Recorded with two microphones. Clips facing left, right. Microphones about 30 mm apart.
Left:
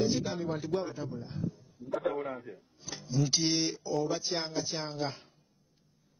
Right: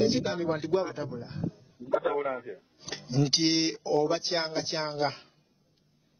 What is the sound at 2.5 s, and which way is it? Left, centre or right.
Speech, right.